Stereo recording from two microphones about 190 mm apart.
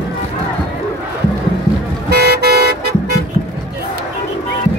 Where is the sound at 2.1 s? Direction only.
60° right (ahead or behind).